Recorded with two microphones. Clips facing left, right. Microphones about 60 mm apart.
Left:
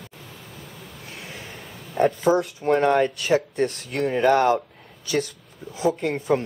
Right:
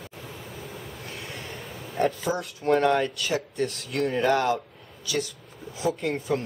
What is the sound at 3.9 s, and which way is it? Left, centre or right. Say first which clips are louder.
Speech: left 3 dB; centre.